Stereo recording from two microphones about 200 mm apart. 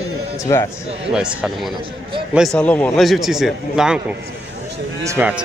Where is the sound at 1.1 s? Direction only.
5° right (ahead or behind).